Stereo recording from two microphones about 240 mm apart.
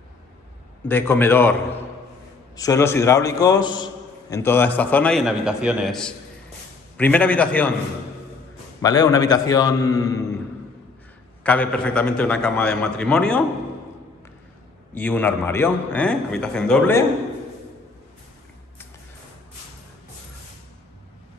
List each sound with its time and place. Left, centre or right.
0.8 s a man's voice: centre
2.5 s a man's voice: centre
8.8 s a man's voice: centre
11.4 s a man's voice: centre
15.0 s a man's voice: centre